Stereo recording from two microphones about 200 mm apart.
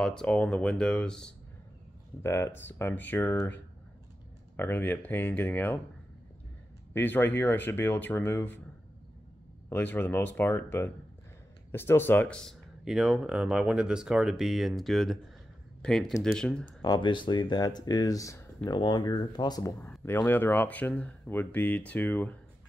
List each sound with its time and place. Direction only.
0.0 s speech: 5° left (ahead or behind)
6.9 s speech: 10° left (ahead or behind)
9.7 s speech: 10° left (ahead or behind)
16.8 s speech: 20° left (ahead or behind)